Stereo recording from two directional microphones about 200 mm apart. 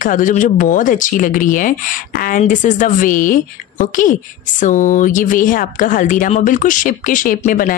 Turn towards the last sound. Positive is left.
turn(degrees=45)  # may be behind; listen again after turning